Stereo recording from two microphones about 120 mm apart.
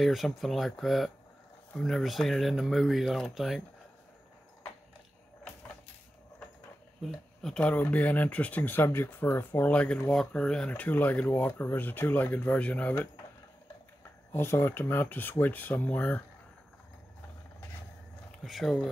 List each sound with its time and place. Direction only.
0.0 s speech: centre (ahead or behind)
7.4 s speech: 10° left (ahead or behind)
14.3 s speech: 20° left (ahead or behind)
18.4 s speech: centre (ahead or behind)